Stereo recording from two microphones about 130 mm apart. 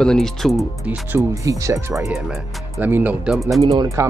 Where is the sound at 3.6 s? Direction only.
45° right (ahead or behind).